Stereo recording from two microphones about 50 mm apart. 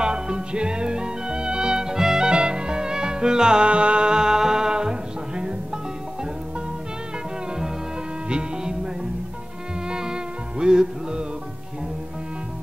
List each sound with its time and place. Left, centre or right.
0.0 s music: centre
8.3 s music: centre
9.8 s music: centre